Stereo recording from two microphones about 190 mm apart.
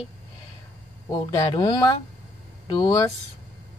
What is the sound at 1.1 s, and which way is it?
Speech, 25° left (ahead or behind).